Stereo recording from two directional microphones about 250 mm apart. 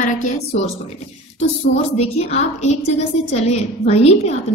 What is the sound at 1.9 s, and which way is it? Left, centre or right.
A woman's voice, left.